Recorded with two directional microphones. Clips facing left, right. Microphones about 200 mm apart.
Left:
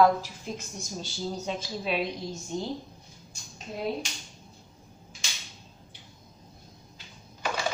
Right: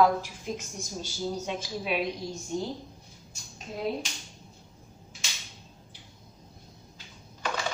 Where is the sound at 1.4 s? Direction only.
10° right (ahead or behind).